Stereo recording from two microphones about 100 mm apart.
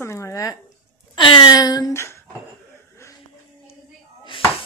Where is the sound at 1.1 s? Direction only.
60° left (ahead or behind).